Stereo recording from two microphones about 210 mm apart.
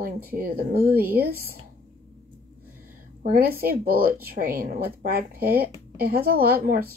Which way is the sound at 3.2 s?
45° right (ahead or behind).